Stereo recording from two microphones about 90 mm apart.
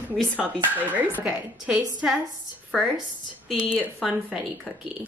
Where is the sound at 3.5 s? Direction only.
10° right (ahead or behind).